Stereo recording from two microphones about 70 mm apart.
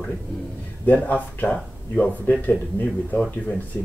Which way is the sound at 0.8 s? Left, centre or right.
Left.